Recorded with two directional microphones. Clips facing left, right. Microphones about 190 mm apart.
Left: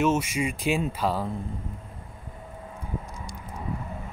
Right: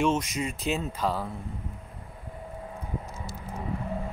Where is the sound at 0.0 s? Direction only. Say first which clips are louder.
Left 2 dB; 10° left (ahead or behind).